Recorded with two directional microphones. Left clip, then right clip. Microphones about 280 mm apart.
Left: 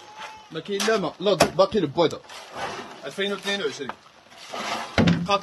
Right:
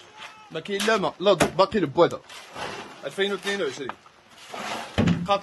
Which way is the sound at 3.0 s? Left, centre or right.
Right.